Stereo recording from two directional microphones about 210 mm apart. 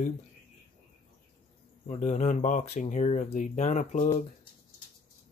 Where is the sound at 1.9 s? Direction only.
35° left (ahead or behind).